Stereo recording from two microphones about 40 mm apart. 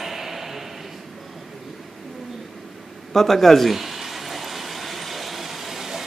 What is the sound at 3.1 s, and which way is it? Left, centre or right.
Speech, centre.